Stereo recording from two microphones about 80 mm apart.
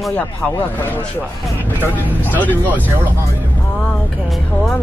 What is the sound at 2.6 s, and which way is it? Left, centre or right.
Speech, right.